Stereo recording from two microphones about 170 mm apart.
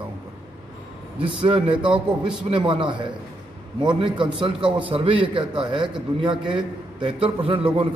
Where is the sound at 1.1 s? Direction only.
30° right (ahead or behind).